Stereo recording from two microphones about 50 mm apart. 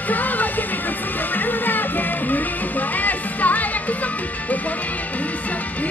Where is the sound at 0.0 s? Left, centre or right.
Left.